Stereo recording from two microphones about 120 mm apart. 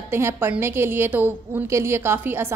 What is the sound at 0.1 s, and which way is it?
A woman's voice, 20° right (ahead or behind).